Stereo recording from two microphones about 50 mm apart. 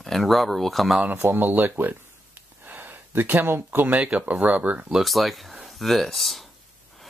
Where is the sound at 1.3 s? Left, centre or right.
Right.